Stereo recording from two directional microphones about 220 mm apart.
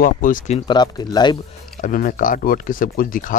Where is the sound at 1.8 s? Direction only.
40° left (ahead or behind).